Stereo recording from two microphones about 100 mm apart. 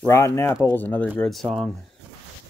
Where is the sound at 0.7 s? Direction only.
15° left (ahead or behind).